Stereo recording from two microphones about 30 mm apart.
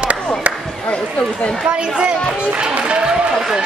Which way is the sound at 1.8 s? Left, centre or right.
Right.